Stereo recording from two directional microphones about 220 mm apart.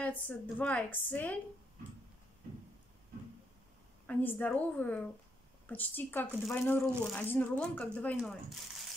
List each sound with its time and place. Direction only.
0.0 s a woman's voice: 5° left (ahead or behind)
4.1 s a woman's voice: 10° left (ahead or behind)